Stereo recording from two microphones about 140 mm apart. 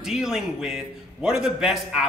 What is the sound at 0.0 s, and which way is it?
Speech, 5° right (ahead or behind).